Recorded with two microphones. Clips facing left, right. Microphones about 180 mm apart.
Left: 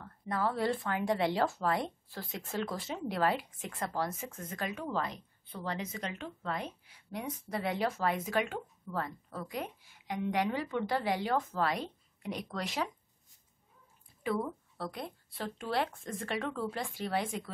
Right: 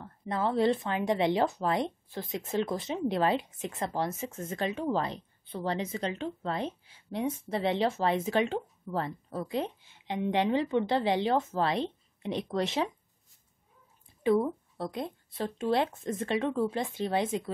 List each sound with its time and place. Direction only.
0.0 s speech: 20° right (ahead or behind)
14.2 s speech: 20° right (ahead or behind)